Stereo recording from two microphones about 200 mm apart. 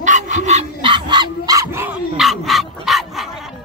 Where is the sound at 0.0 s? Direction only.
40° right (ahead or behind); by 2.0 s 10° right (ahead or behind).